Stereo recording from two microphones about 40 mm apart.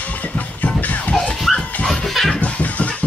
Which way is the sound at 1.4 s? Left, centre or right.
Centre.